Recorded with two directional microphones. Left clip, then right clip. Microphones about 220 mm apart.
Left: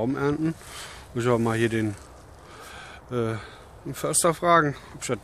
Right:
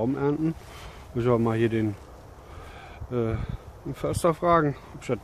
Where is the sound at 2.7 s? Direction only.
Centre (ahead or behind).